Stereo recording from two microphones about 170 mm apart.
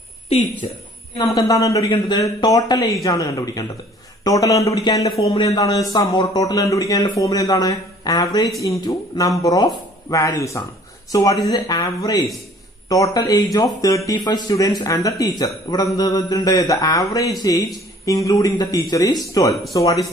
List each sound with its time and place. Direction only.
1.1 s a man's voice: 20° left (ahead or behind)